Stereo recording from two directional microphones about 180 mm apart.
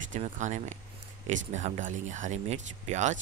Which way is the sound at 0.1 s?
40° right (ahead or behind).